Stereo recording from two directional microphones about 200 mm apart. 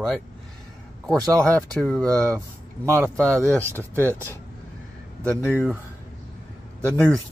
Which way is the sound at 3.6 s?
10° right (ahead or behind).